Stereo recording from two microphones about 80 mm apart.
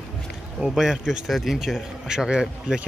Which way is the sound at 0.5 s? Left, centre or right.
Centre.